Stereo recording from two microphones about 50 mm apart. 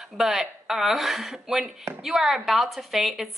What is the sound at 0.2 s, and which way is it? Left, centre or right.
A woman's voice, centre.